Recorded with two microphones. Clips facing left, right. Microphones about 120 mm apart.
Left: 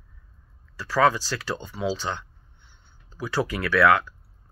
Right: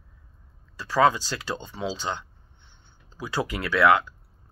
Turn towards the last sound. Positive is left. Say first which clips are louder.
# left 1 dB
turn(degrees=-20)  # may be behind; listen again after turning